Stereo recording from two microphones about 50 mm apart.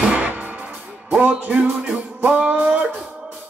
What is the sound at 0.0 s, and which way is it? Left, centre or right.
Music, right.